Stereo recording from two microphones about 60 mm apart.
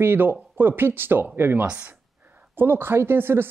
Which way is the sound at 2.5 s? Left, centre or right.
Right.